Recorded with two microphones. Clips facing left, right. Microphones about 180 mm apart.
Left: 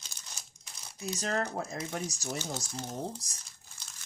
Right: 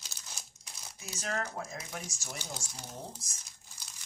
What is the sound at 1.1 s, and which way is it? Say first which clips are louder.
Speech: left 4 dB; 35° left (ahead or behind).